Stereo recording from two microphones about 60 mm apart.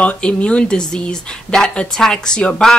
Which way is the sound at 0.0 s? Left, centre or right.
Centre.